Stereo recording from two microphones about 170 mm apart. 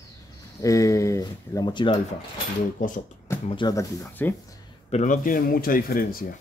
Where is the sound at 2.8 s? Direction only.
50° left (ahead or behind).